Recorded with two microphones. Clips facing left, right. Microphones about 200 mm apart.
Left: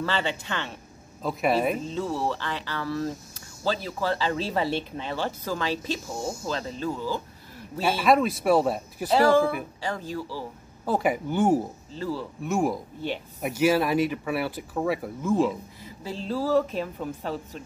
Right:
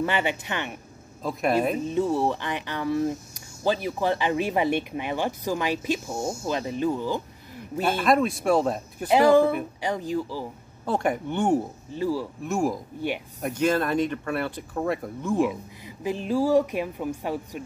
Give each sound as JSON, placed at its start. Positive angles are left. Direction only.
{"t": 0.0, "sound": "speech", "side_deg": -15}
{"t": 1.8, "sound": "speech", "side_deg": -15}
{"t": 7.8, "sound": "speech", "side_deg": 0}
{"t": 9.1, "sound": "speech", "side_deg": -20}
{"t": 10.9, "sound": "speech", "side_deg": 5}
{"t": 11.9, "sound": "speech", "side_deg": -15}
{"t": 12.4, "sound": "speech", "side_deg": 0}
{"t": 16.0, "sound": "speech", "side_deg": -15}